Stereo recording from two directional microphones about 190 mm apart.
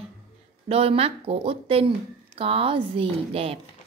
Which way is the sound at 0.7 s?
30° right (ahead or behind).